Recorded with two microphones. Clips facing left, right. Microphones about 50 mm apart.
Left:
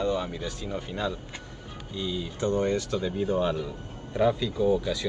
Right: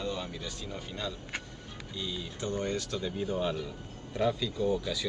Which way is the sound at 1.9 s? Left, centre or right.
Centre.